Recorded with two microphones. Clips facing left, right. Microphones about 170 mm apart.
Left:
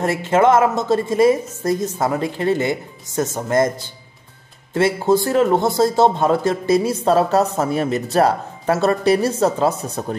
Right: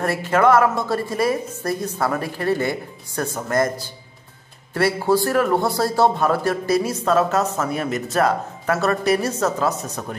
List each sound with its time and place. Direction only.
0.0 s speech: 25° left (ahead or behind)